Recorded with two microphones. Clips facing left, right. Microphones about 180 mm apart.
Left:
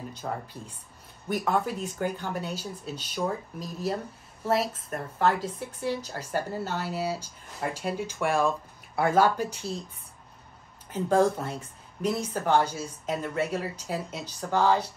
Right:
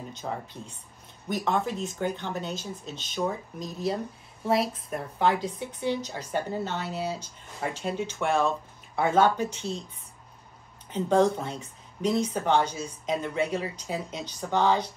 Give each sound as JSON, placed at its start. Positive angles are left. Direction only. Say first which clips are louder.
{"t": 0.2, "sound": "speech", "louder": "even", "side_deg": 5}
{"t": 10.9, "sound": "speech", "louder": "right 1 dB", "side_deg": 5}